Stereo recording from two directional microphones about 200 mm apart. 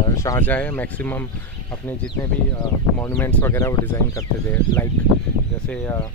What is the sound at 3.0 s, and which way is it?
Speech, 10° left (ahead or behind).